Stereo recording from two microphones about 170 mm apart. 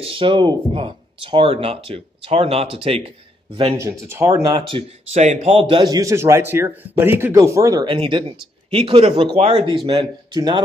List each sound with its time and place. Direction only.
0.0 s speech: 30° right (ahead or behind)
3.7 s speech: 15° right (ahead or behind); by 9.8 s 40° right (ahead or behind)
9.8 s speech: 25° right (ahead or behind)